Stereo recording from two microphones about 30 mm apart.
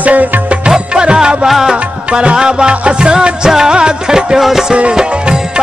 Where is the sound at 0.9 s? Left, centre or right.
Right.